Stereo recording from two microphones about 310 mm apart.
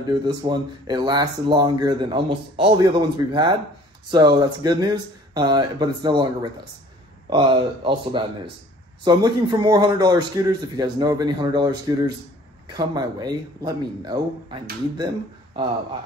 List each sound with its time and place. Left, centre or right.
0.2 s speech: centre